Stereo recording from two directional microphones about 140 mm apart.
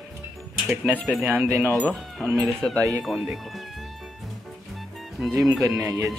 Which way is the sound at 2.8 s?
25° right (ahead or behind).